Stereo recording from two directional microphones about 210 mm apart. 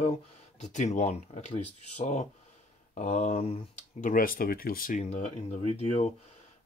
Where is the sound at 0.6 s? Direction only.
35° left (ahead or behind).